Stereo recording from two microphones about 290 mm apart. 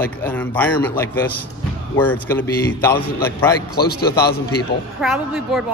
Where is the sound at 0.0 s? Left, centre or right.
Centre.